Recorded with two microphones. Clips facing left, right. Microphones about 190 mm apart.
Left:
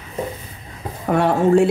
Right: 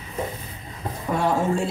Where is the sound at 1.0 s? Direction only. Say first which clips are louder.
Left 6 dB; 65° left (ahead or behind).